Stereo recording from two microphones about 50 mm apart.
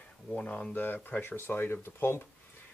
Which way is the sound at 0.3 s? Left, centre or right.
Left.